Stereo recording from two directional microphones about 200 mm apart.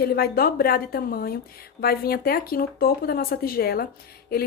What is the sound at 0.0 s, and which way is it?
A woman's voice, 50° left (ahead or behind).